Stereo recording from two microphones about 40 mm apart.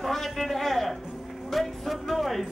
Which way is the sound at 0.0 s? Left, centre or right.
Centre.